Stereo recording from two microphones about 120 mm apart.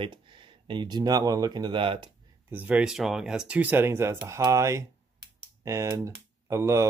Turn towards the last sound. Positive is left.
turn(degrees=-25)  # may be behind; listen again after turning